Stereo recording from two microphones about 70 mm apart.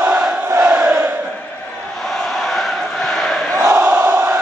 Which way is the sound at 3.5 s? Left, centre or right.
Right.